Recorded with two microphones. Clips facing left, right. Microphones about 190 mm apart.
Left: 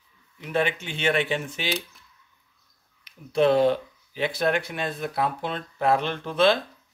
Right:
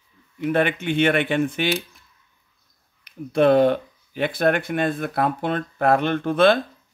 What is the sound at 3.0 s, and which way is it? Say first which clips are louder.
Speech: right 3 dB; 55° right (ahead or behind).